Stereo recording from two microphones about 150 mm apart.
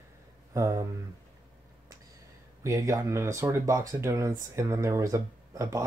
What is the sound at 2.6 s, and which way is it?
Speech, 20° right (ahead or behind).